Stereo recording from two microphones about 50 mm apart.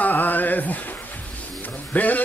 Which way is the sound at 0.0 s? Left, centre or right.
Left.